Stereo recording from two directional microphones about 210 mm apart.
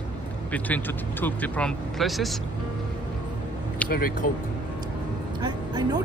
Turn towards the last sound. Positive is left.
turn(degrees=-20)  # may be behind; listen again after turning